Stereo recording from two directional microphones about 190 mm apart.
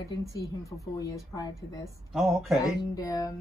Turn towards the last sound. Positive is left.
turn(degrees=20)  # may be behind; listen again after turning